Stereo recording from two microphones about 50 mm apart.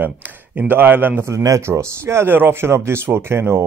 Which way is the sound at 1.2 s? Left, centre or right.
Right.